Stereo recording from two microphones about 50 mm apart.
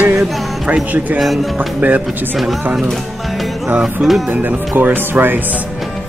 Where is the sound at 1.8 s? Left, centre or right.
Right.